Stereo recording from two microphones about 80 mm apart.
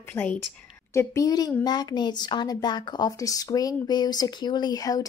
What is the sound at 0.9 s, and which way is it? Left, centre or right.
Speech, left.